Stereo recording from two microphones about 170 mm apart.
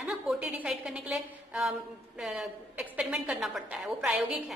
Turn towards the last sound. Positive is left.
turn(degrees=0)  # may be behind; listen again after turning